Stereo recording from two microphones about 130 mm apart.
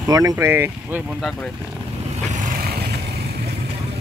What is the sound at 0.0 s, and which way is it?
Speech, 25° right (ahead or behind).